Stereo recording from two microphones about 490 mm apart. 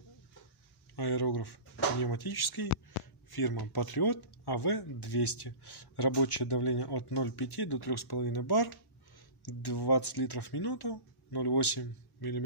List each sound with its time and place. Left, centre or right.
0.9 s speech: left